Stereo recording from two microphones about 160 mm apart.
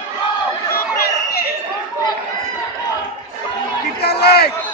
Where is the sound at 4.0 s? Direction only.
85° left.